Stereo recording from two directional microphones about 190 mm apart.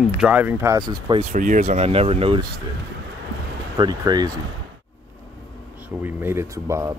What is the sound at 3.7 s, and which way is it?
Speech, 20° right (ahead or behind).